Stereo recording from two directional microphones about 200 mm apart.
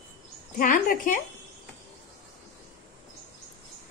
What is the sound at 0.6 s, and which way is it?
Speech, 40° left (ahead or behind).